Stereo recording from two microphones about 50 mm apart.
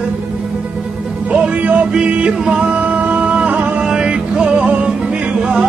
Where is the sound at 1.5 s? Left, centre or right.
Right.